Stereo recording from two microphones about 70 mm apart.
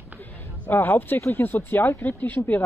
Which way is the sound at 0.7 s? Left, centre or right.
Left.